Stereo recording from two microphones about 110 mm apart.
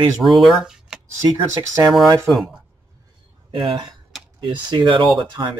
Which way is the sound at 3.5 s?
50° right (ahead or behind).